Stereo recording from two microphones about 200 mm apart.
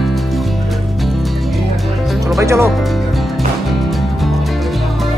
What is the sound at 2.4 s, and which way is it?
Music, 15° right (ahead or behind).